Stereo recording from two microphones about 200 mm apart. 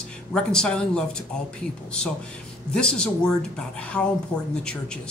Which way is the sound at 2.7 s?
5° left (ahead or behind).